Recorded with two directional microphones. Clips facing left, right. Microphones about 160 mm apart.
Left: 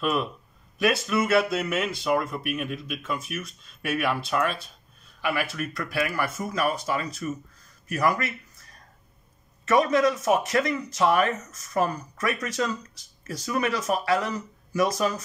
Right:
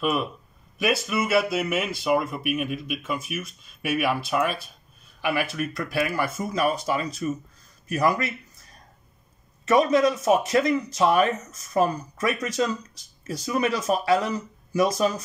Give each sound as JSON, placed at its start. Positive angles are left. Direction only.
{"t": 0.0, "sound": "speech", "side_deg": -5}
{"t": 5.2, "sound": "speech", "side_deg": -20}
{"t": 9.7, "sound": "speech", "side_deg": -20}